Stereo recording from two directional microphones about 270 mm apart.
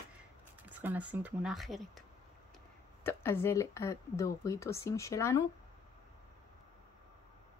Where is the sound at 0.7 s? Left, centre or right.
Centre.